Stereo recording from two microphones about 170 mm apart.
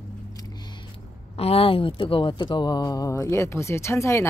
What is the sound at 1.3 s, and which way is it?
Speech, 35° left (ahead or behind).